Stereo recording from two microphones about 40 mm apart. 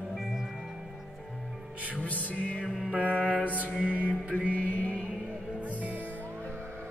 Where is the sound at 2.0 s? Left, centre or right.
Left.